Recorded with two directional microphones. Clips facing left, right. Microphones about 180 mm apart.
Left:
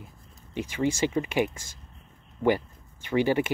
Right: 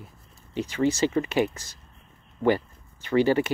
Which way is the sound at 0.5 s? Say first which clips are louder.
Right 3 dB; 15° left (ahead or behind).